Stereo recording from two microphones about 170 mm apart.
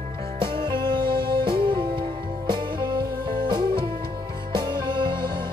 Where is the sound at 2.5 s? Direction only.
25° right (ahead or behind).